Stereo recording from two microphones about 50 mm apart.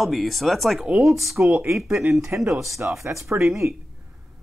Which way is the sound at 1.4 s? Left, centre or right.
Right.